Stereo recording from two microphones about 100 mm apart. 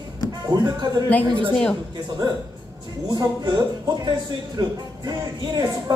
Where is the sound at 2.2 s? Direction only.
50° right (ahead or behind).